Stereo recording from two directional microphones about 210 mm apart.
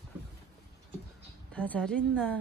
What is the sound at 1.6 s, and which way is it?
Speech, 5° left (ahead or behind).